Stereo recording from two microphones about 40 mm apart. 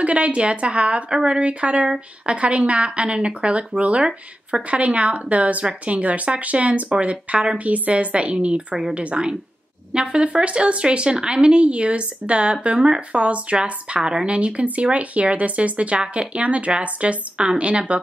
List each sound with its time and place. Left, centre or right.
0.0 s speech: right
13.1 s speech: right